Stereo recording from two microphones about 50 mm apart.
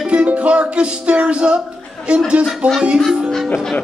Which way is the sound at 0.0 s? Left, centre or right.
Right.